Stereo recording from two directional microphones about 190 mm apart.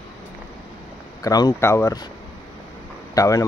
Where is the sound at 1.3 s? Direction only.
20° left (ahead or behind).